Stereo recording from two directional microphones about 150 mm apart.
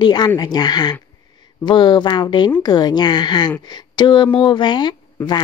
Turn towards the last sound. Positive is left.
turn(degrees=30)  # may be behind; listen again after turning